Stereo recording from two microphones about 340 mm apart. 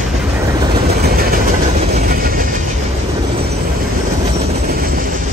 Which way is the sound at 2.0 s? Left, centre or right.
Right.